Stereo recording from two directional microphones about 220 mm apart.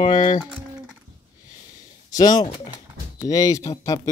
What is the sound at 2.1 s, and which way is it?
Speech, 15° left (ahead or behind).